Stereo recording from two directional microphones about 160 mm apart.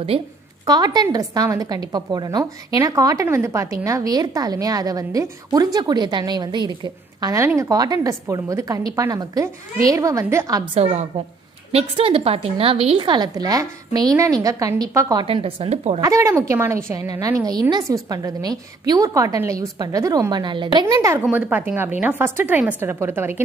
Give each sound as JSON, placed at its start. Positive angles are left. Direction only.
{"t": 0.7, "sound": "a woman's voice", "side_deg": -25}
{"t": 10.7, "sound": "a woman's voice", "side_deg": -40}
{"t": 15.2, "sound": "a woman's voice", "side_deg": -35}
{"t": 16.0, "sound": "a woman's voice", "side_deg": -20}
{"t": 21.0, "sound": "a woman's voice", "side_deg": -15}